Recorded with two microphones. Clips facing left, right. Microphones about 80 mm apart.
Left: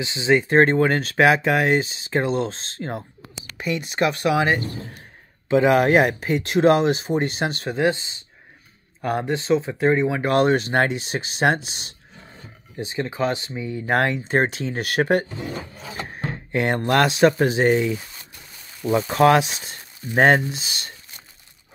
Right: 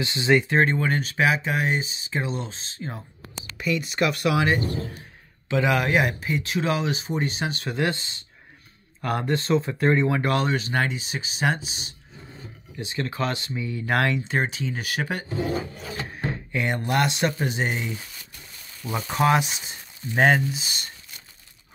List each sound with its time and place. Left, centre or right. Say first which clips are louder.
0.0 s speech: left 1 dB; centre
0.5 s speech: left 5 dB; left
1.0 s speech: left 6 dB; left
3.5 s speech: left 1 dB; left
7.6 s speech: left 5 dB; left
9.0 s speech: left 2 dB; left
10.3 s speech: left 6 dB; left
11.0 s speech: left 5 dB; left
12.9 s speech: left 4 dB; centre; by 14.5 s left
14.5 s speech: left 4 dB; left
16.5 s speech: left 5 dB; left
18.8 s speech: left 9 dB; centre
19.1 s speech: left 5 dB; left
20.2 s speech: left 3 dB; left